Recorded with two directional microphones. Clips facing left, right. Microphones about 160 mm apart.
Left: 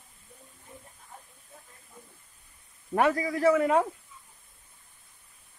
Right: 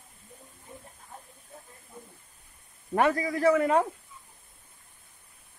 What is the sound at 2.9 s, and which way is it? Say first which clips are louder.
Speech: even; 5° left (ahead or behind).